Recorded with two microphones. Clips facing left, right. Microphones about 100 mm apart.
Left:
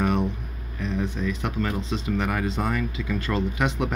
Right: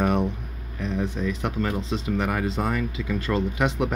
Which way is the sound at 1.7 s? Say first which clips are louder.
Right 1 dB; 15° right (ahead or behind).